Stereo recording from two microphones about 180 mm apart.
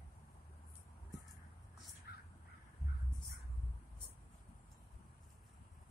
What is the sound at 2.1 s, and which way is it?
Crow, 60° left (ahead or behind).